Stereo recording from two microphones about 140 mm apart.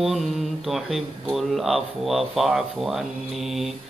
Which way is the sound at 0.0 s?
Centre (ahead or behind).